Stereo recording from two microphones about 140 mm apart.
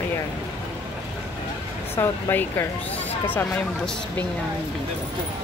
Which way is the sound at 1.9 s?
20° left (ahead or behind).